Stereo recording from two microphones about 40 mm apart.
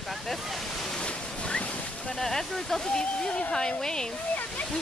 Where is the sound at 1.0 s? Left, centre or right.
Left.